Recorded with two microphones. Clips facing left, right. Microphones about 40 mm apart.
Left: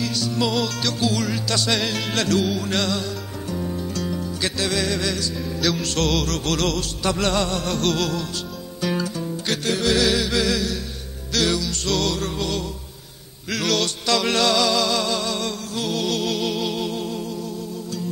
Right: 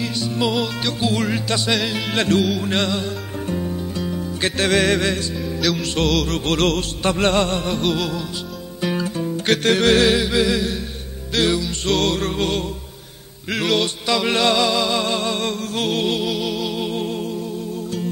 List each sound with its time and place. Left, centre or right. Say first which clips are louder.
0.0 s music: right 1 dB; right
1.7 s music: right 3 dB; centre
2.1 s music: right 3 dB; right
3.6 s music: right 1 dB; centre
4.4 s music: right 7 dB; right
5.4 s speech: right 1 dB; centre
6.2 s music: right 3 dB; right
7.6 s music: right 1 dB; centre
9.5 s music: right 6 dB; right
10.1 s music: right 3 dB; right
11.9 s music: right 4 dB; right
13.5 s music: right 3 dB; right
16.3 s music: right 1 dB; centre
16.9 s music: right 3 dB; right